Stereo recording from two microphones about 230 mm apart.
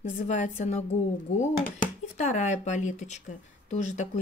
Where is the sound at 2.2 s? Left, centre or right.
Left.